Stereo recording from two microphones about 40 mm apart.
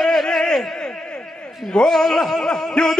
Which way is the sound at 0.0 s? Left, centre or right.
Centre.